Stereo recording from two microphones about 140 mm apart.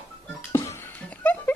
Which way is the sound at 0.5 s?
20° left (ahead or behind).